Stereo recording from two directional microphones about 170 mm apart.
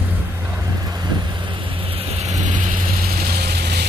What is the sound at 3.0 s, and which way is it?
Ratchet, 65° right (ahead or behind).